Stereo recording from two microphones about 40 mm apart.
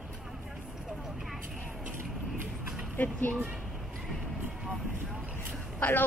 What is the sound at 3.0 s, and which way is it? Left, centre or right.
Speech, left.